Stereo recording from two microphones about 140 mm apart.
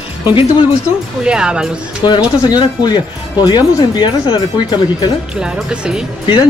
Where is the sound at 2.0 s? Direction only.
30° left (ahead or behind).